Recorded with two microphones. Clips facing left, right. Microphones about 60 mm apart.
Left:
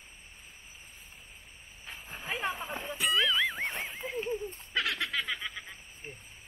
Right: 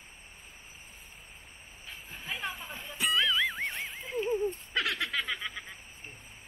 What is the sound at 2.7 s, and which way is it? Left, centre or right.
Music, centre.